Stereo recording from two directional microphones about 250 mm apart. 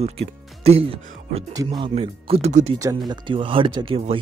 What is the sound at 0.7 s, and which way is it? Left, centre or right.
Speech, right.